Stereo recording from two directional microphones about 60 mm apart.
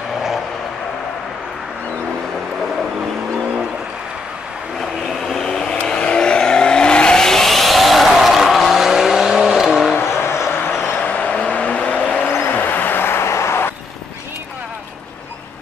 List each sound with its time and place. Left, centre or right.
5.2 s vehicle: centre
9.9 s a sound: left
11.0 s vehicle: left
12.2 s vehicle: left